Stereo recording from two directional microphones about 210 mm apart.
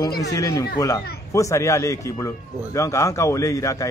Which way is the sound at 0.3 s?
15° left (ahead or behind).